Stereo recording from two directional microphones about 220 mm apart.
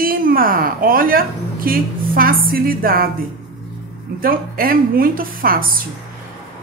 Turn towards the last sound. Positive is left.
turn(degrees=-40)  # may be behind; listen again after turning